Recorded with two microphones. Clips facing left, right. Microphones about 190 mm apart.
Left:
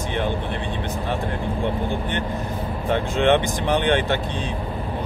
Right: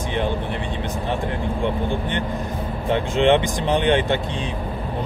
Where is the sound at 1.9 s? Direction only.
15° right (ahead or behind).